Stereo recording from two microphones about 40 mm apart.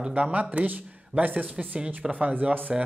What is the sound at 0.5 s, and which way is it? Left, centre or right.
Speech, right.